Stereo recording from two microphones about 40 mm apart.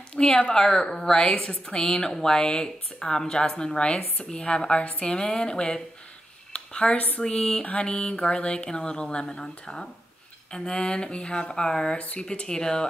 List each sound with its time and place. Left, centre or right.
0.2 s a woman's voice: centre
6.5 s a sound: left
7.2 s a woman's voice: centre